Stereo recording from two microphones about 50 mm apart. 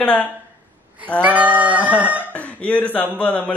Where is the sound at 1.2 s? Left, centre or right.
Right.